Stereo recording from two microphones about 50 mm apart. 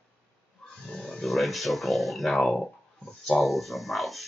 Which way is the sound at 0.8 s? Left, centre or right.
Centre.